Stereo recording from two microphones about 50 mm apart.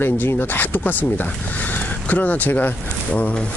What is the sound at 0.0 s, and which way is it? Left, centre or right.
Speech, left.